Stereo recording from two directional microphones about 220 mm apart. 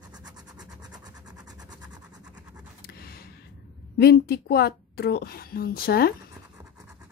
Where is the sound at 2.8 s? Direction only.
45° left (ahead or behind).